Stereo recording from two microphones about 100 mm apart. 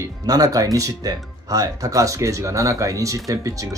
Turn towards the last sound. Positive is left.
turn(degrees=-35)  # may be behind; listen again after turning